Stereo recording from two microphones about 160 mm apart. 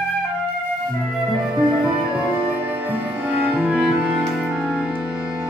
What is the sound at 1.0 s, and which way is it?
Music, 5° right (ahead or behind).